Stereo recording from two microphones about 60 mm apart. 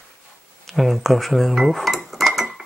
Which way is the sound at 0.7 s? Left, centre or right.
Centre.